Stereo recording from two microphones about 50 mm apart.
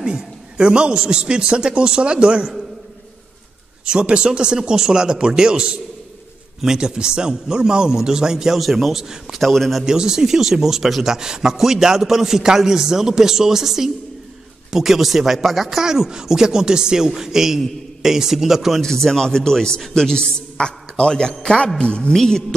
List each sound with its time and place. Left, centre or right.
0.0 s a man's voice: centre
3.8 s speech: centre
9.4 s a man's voice: centre
9.8 s speech: centre
18.8 s a man's voice: centre
22.1 s speech: centre